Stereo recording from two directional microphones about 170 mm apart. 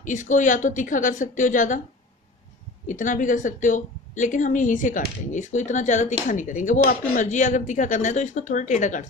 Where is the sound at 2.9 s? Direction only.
50° left (ahead or behind).